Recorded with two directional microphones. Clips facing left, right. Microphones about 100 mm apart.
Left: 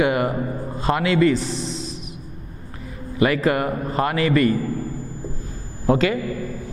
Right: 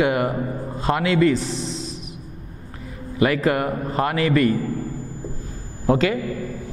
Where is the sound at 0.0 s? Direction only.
10° left (ahead or behind).